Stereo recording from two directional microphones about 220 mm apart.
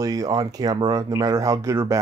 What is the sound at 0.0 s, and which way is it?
Speech, 15° right (ahead or behind).